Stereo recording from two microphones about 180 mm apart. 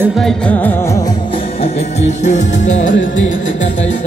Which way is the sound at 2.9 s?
90° left.